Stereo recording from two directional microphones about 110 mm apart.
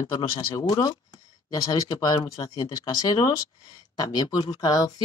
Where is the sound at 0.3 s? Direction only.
35° left (ahead or behind).